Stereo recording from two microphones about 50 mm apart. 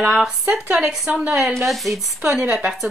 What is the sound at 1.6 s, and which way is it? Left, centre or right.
Speech, centre.